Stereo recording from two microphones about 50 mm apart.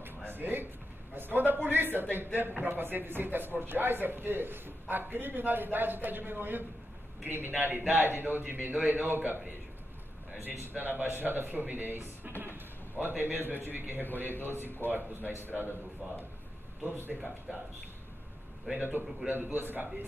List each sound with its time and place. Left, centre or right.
0.0 s a sound: right
1.1 s a man's voice: right
10.4 s a man's voice: right
16.9 s speech: right
18.7 s a man's voice: right